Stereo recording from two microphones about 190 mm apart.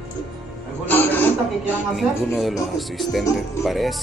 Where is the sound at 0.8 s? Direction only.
10° left (ahead or behind).